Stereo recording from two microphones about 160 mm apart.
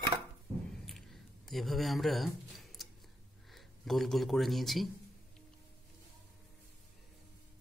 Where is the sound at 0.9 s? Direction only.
Centre (ahead or behind).